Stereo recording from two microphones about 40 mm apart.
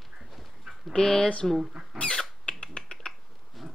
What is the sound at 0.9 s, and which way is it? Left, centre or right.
Speech, left.